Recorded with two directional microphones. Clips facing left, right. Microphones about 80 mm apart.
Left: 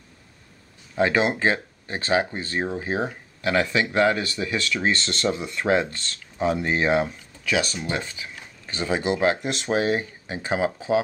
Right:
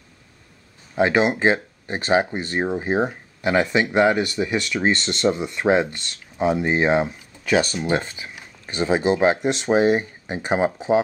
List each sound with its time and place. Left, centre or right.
0.9 s speech: centre
7.9 s speech: right
8.4 s speech: right